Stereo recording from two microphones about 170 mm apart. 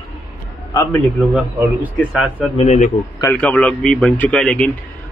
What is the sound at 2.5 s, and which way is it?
Speech, 45° left (ahead or behind).